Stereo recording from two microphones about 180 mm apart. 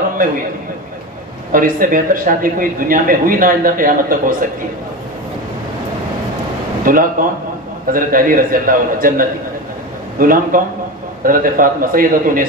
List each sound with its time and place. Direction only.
1.5 s speech: 50° right (ahead or behind)
6.8 s speech: 50° right (ahead or behind)